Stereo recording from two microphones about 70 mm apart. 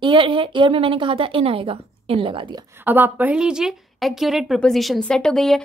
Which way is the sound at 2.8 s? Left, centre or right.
Right.